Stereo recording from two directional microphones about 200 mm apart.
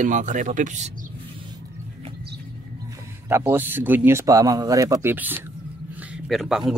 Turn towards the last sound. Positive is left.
turn(degrees=0)  # may be behind; listen again after turning